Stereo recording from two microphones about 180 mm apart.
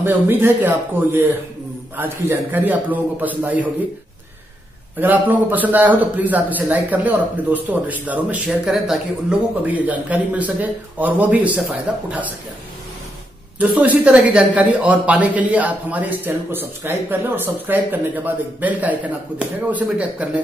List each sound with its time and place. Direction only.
0.0 s a man's voice: 10° right (ahead or behind)
5.0 s a man's voice: 10° right (ahead or behind)
13.6 s a man's voice: 10° right (ahead or behind)